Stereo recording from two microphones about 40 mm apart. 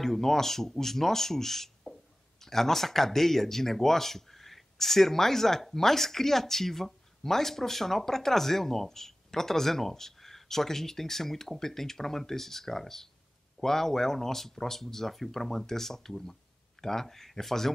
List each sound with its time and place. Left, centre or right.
0.0 s speech: centre